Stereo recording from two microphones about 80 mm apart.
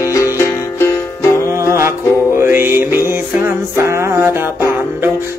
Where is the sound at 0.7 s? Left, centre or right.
Left.